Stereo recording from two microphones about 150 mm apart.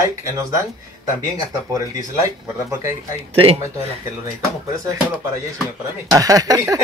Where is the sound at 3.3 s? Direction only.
40° right (ahead or behind).